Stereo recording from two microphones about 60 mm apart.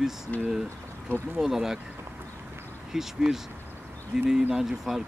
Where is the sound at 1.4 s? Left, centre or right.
Centre.